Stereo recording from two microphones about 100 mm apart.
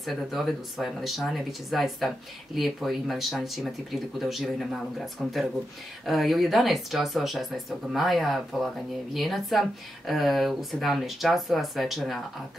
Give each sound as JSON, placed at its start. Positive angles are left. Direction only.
{"t": 0.0, "sound": "speech", "side_deg": 0}